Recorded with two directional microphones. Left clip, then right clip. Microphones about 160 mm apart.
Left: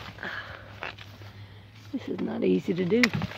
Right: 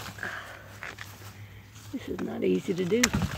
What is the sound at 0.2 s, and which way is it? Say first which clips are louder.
Dog: left 1 dB; 15° left (ahead or behind).